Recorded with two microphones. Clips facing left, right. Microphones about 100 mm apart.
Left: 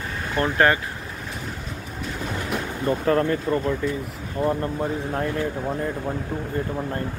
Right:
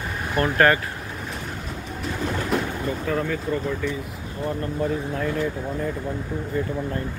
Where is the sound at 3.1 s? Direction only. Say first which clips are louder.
Left 5 dB; 50° left (ahead or behind).